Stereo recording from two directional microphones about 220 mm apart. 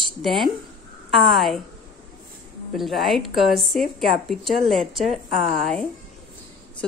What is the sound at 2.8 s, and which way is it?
A woman's voice, centre (ahead or behind).